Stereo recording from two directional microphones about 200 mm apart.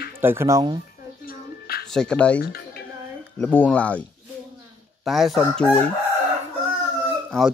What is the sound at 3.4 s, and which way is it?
Speech, 10° left (ahead or behind).